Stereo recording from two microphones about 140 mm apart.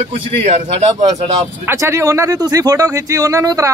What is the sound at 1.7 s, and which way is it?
Speech, 20° right (ahead or behind).